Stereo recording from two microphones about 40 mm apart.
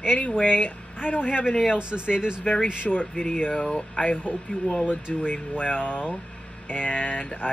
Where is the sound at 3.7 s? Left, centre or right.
Left.